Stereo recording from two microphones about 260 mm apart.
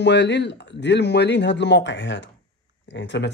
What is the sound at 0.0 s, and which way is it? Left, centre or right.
Speech, left.